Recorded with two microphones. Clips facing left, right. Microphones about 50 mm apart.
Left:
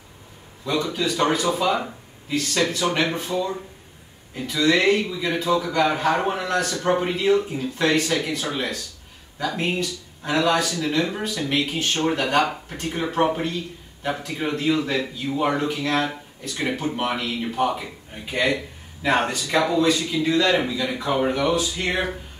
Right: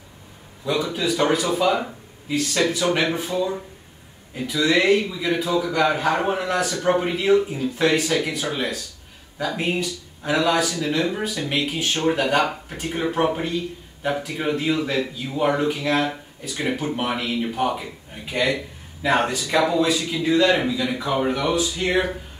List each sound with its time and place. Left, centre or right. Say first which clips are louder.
0.7 s a man's voice: right 1 dB; centre